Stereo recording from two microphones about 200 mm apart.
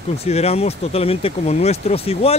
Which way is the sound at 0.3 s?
30° left (ahead or behind).